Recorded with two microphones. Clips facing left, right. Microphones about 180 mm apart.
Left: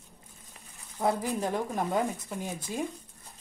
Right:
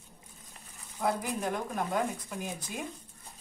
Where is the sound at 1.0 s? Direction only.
25° left (ahead or behind).